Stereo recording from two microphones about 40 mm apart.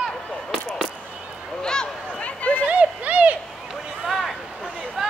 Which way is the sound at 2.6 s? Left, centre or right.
Right.